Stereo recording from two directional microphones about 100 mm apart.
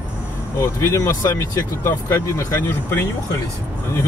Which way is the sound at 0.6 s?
30° left (ahead or behind).